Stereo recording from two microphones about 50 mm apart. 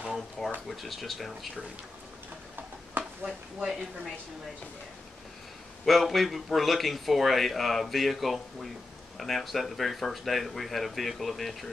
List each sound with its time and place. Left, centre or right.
0.0 s a sound: centre
0.7 s a man's voice: centre
3.0 s speech: centre
5.9 s a man's voice: centre